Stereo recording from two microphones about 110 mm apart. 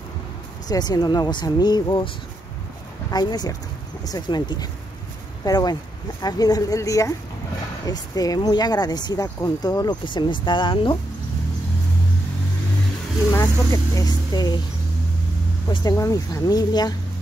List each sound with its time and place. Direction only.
0.7 s speech: 35° left (ahead or behind)
3.1 s speech: 35° left (ahead or behind)
13.3 s speech: 25° left (ahead or behind)
15.8 s speech: 30° left (ahead or behind)